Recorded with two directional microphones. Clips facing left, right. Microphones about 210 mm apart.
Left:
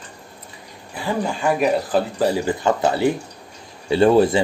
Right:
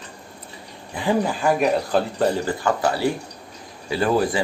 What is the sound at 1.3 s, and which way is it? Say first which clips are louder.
Speech: left 1 dB; centre (ahead or behind).